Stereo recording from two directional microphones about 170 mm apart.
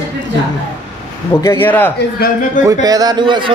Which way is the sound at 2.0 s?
60° left (ahead or behind).